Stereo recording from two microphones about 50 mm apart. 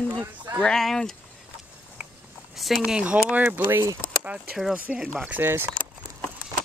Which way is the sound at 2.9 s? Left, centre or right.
Centre.